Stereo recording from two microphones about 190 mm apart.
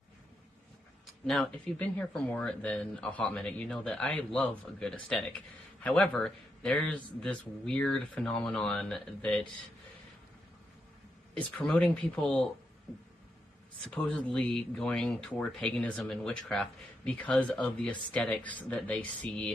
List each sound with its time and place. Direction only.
1.2 s speech: 5° left (ahead or behind)
11.5 s speech: 5° left (ahead or behind)